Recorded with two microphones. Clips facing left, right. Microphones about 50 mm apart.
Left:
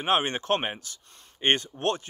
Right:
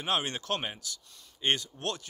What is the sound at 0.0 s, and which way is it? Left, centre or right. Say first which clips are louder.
Speech: left 6 dB; left.